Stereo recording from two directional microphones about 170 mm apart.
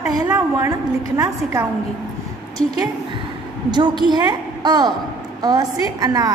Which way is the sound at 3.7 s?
25° right (ahead or behind).